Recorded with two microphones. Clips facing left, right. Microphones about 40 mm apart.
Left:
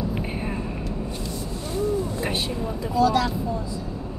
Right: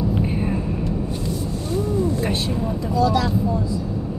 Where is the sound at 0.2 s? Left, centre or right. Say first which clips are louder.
Right 6 dB; centre.